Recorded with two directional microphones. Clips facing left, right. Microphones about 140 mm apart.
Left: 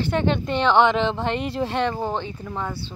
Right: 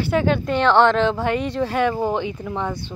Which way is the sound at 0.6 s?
10° left (ahead or behind).